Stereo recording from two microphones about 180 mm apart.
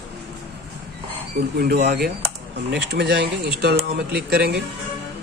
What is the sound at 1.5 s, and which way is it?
Speech, 60° right (ahead or behind).